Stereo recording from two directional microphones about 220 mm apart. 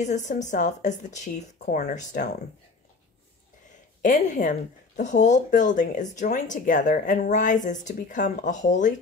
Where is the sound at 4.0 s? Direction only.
35° left (ahead or behind).